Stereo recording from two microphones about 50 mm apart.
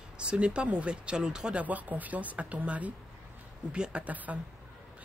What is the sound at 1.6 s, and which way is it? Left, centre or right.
Speech, right.